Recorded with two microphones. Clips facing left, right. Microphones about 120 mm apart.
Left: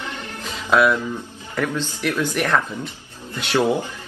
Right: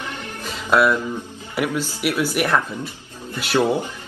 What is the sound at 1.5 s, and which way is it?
A man's voice, 10° right (ahead or behind).